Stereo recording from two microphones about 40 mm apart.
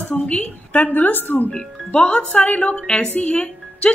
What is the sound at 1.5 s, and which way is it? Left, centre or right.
A woman's voice, centre.